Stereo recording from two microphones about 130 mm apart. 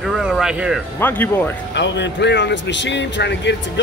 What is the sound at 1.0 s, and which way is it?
Speech, 15° left (ahead or behind).